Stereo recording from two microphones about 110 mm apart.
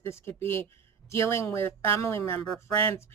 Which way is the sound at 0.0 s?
25° left (ahead or behind).